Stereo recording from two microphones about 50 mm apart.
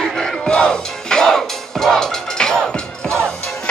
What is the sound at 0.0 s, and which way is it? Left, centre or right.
Music, centre.